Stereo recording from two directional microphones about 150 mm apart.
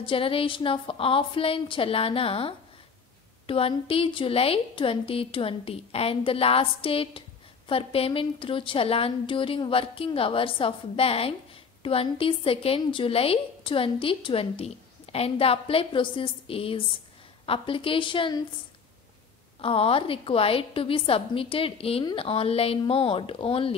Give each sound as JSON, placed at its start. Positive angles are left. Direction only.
{"t": 0.0, "sound": "a woman's voice", "side_deg": 35}
{"t": 19.6, "sound": "a woman's voice", "side_deg": 40}